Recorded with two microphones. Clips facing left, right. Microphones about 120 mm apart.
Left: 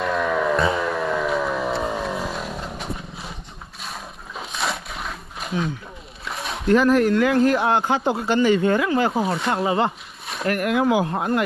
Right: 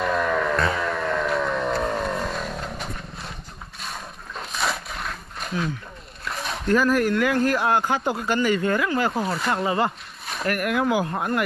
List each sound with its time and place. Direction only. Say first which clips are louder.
0.0 s a sound: left 1 dB; centre (ahead or behind)
6.7 s speech: left 4 dB; 25° left (ahead or behind)
9.2 s speech: left 3 dB; centre (ahead or behind)
9.5 s speech: left 1 dB; 25° left (ahead or behind)